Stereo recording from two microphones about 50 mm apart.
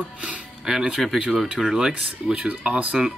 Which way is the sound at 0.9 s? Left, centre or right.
Centre.